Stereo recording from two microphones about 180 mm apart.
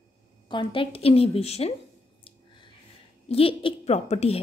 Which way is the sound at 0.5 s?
30° left (ahead or behind).